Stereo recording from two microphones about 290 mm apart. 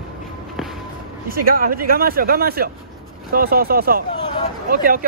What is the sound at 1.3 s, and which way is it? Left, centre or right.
Speech, right.